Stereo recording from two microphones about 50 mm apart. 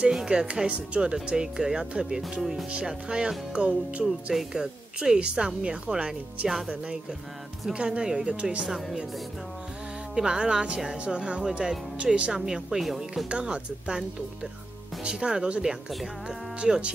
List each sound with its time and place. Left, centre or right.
0.3 s speech: centre
4.0 s speech: centre
7.7 s speech: centre
8.6 s speech: centre
10.1 s speech: centre
12.3 s speech: centre
13.3 s speech: right
15.0 s speech: centre